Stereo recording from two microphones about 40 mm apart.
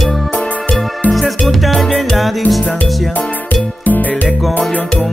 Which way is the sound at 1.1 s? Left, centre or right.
Centre.